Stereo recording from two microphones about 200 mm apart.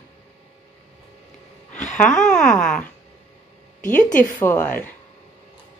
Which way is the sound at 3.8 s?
40° left (ahead or behind).